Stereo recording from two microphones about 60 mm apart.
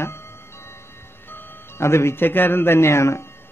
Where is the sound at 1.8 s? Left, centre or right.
Left.